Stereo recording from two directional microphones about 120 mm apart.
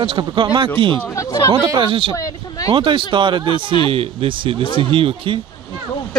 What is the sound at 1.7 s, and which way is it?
Speech, 45° right (ahead or behind).